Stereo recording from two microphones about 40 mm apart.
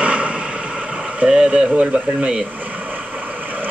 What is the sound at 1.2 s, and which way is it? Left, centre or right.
Speech, right.